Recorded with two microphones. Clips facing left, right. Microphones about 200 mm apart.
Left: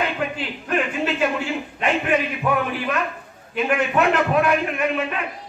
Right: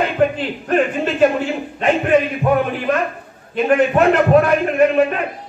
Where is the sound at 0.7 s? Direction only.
45° right (ahead or behind).